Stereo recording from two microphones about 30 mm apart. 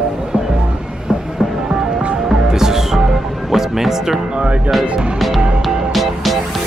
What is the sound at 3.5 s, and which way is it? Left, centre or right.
Speech, centre.